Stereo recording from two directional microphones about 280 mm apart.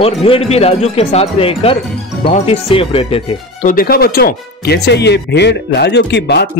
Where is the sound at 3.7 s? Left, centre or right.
Left.